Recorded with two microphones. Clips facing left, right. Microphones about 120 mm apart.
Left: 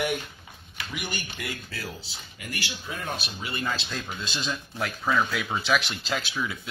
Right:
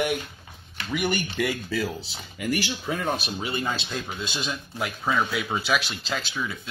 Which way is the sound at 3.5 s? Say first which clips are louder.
Right 1 dB; 25° right (ahead or behind).